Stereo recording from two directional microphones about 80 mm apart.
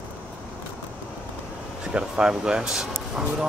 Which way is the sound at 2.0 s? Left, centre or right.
Centre.